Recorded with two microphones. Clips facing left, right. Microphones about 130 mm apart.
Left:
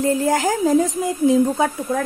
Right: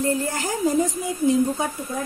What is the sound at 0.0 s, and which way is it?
A woman's voice, 90° left.